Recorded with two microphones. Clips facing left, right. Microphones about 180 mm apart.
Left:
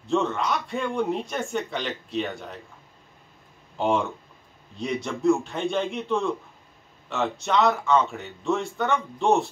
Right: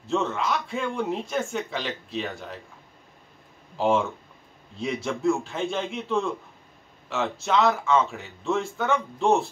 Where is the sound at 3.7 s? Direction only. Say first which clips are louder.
Right 1 dB; centre (ahead or behind).